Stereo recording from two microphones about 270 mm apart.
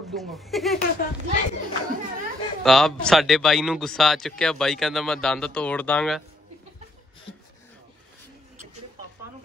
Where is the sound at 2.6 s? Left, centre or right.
Centre.